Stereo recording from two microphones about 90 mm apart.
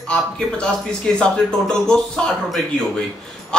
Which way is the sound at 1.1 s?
10° left (ahead or behind).